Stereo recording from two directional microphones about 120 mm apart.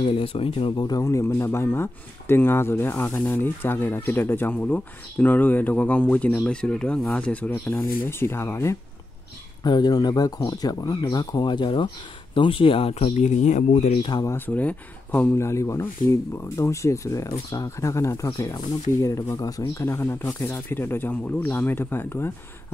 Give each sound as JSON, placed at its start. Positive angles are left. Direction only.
{"t": 0.0, "sound": "speech", "side_deg": 50}
{"t": 1.0, "sound": "speech", "side_deg": 20}
{"t": 9.6, "sound": "speech", "side_deg": 35}
{"t": 13.1, "sound": "speech", "side_deg": 80}
{"t": 14.2, "sound": "speech", "side_deg": 15}